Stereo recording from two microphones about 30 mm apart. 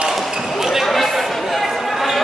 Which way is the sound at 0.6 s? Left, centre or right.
Centre.